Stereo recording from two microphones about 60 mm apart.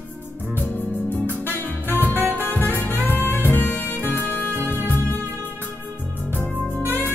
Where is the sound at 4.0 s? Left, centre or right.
Right.